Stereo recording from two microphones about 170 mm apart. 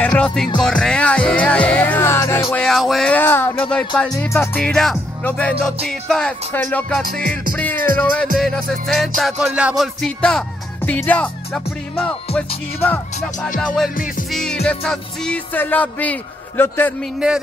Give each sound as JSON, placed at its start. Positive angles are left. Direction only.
{"t": 0.0, "sound": "music", "side_deg": 5}
{"t": 2.5, "sound": "music", "side_deg": 0}
{"t": 4.2, "sound": "speech", "side_deg": 10}
{"t": 7.0, "sound": "music", "side_deg": -60}
{"t": 8.0, "sound": "music", "side_deg": 10}
{"t": 8.4, "sound": "speech", "side_deg": 0}
{"t": 10.9, "sound": "music", "side_deg": 10}
{"t": 17.0, "sound": "speech", "side_deg": -5}